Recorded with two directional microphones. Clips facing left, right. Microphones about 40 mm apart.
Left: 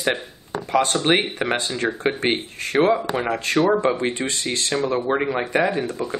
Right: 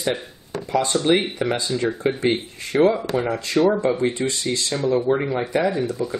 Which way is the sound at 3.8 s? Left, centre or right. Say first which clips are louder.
Right 1 dB; left.